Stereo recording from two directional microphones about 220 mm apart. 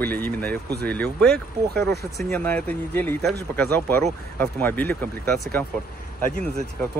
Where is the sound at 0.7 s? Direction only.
45° right (ahead or behind).